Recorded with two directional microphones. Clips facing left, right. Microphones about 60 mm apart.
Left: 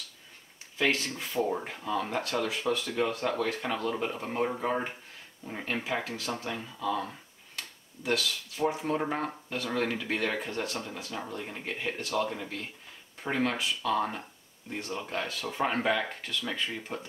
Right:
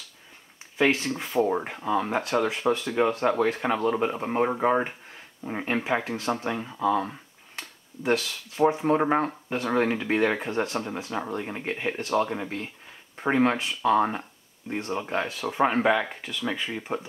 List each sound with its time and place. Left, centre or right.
0.7 s speech: right